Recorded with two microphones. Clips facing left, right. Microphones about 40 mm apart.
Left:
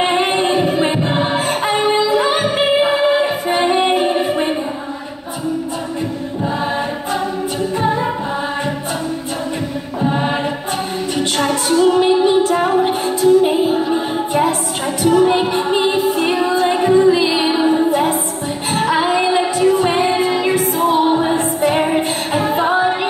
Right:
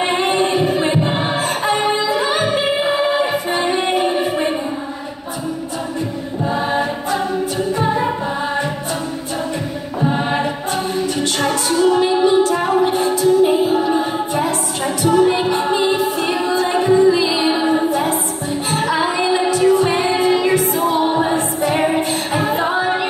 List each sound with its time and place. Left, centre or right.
0.1 s singing: left
1.7 s music: centre
3.1 s music: centre
12.3 s a capella: left
13.2 s music: left
15.0 s music: centre
15.3 s music: left
17.5 s music: centre
18.8 s music: centre